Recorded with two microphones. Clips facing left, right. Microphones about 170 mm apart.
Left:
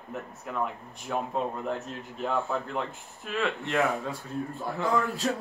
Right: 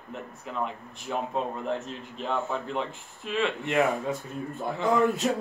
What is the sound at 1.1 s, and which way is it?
Speech, 5° right (ahead or behind).